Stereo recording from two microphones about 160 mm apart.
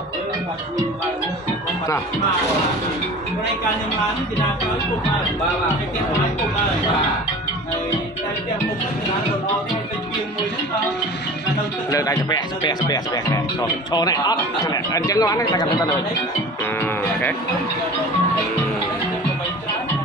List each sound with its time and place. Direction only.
11.9 s speech: 20° left (ahead or behind)